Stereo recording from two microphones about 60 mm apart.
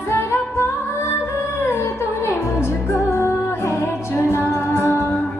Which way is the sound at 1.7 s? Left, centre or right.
Left.